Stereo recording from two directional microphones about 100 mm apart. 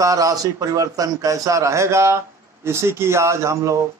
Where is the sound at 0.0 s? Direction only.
35° right (ahead or behind).